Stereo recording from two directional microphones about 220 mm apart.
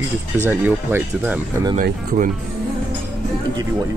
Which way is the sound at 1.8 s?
35° right (ahead or behind).